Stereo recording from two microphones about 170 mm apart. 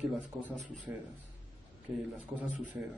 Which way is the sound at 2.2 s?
5° right (ahead or behind).